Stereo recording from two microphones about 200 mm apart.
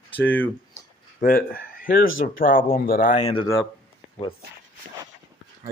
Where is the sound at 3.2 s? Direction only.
30° left (ahead or behind).